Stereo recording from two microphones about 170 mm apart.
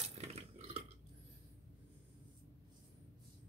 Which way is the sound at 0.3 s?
40° right (ahead or behind).